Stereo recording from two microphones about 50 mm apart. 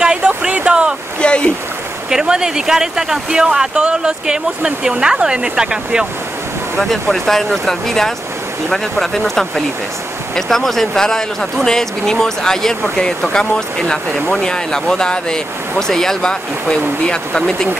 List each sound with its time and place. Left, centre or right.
0.0 s a sound: right
1.2 s speech: left
2.0 s speech: centre
6.8 s speech: centre